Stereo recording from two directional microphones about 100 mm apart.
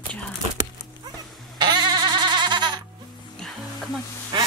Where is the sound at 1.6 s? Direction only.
45° right (ahead or behind).